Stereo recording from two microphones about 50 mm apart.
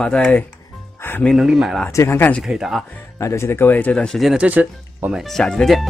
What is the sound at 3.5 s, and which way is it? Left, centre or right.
Speech, left.